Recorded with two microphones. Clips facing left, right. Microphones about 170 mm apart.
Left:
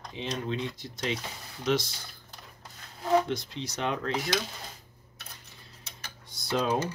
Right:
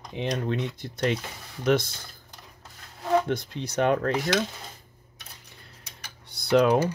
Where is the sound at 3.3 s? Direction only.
55° right (ahead or behind).